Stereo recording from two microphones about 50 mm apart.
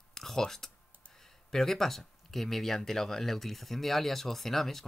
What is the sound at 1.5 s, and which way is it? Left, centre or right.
Speech, centre.